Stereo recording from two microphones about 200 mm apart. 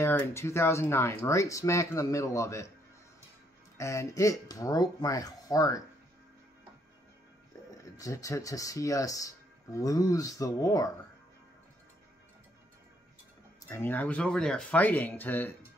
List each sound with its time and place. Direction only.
0.0 s speech: 10° left (ahead or behind)
3.7 s speech: 15° left (ahead or behind)
7.7 s speech: 15° left (ahead or behind)
13.7 s speech: 10° left (ahead or behind)